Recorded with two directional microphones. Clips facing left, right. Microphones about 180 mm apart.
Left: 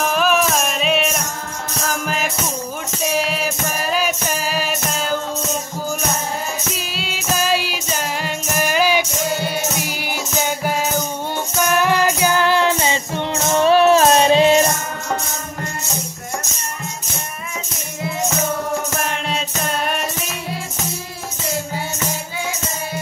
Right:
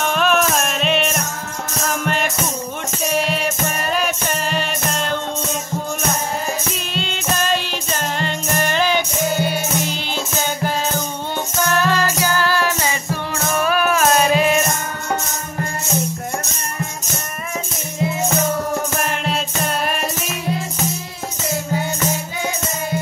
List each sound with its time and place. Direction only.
0.0 s music: centre (ahead or behind)
6.7 s music: 5° left (ahead or behind); by 14.7 s 30° left (ahead or behind)
18.9 s music: centre (ahead or behind)